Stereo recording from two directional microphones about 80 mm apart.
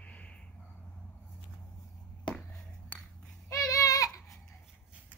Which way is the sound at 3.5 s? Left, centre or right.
Left.